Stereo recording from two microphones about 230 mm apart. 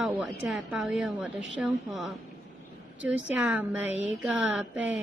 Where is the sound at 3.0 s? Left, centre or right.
Centre.